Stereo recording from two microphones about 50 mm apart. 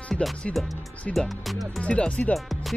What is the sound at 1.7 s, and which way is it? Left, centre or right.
Speech, left.